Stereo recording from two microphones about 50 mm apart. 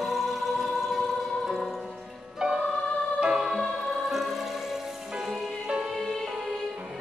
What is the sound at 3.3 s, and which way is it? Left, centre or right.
Music, centre.